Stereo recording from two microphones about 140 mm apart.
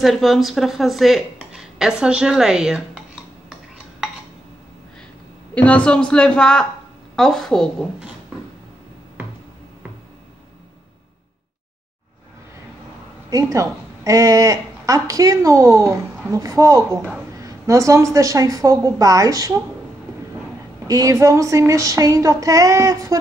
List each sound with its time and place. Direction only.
0.0 s speech: centre (ahead or behind)
3.4 s dishes: centre (ahead or behind)
5.5 s a woman's voice: 10° left (ahead or behind)
13.3 s a woman's voice: 25° right (ahead or behind)
20.8 s a woman's voice: 25° right (ahead or behind)